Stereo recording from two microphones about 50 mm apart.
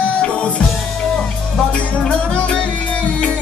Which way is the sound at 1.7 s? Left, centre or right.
Left.